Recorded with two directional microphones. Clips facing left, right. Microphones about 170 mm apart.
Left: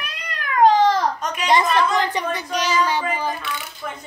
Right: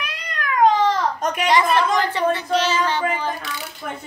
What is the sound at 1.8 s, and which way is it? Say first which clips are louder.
Speech: right 1 dB; 15° left (ahead or behind).